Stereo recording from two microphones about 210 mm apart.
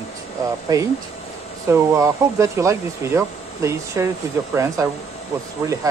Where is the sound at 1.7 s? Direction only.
15° right (ahead or behind).